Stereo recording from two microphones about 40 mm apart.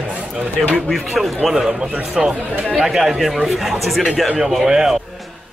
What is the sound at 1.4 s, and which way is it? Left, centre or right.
Speech, centre.